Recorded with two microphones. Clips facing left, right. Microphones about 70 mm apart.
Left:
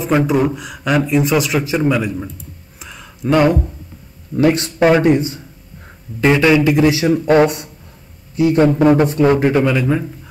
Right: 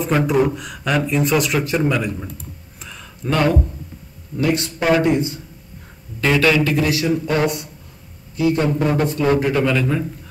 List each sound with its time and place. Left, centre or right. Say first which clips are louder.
0.0 s speech: left 2 dB; centre
2.8 s a sound: left 6 dB; centre
4.4 s speech: left 6 dB; left
7.1 s speech: left 7 dB; left
8.4 s a man's voice: left 5 dB; left